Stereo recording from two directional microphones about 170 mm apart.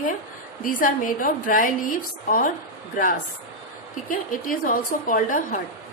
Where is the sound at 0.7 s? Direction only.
55° left (ahead or behind).